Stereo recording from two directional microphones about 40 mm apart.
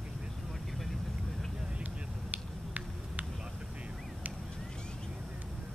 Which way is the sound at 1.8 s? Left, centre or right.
Right.